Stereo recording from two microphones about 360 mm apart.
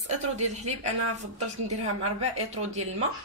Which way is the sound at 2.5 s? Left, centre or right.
Centre.